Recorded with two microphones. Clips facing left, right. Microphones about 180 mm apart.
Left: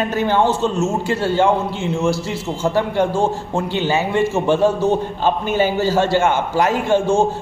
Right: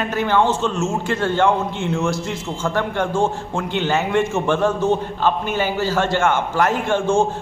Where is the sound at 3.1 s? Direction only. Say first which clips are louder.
Left 1 dB; 40° left (ahead or behind).